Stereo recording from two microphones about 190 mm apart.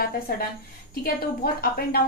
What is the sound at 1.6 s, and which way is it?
Speech, 50° left (ahead or behind).